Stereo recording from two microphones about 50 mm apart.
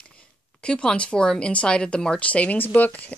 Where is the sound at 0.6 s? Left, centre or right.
Left.